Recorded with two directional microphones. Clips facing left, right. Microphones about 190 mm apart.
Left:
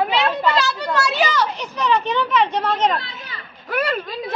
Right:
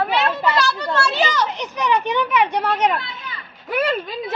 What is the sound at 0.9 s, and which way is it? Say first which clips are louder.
A child's voice: left 3 dB; 25° right (ahead or behind).